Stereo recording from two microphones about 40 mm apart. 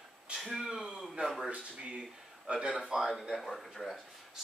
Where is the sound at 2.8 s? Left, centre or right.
Centre.